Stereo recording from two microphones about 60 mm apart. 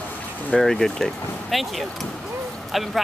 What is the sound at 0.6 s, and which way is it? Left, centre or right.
Speech, centre.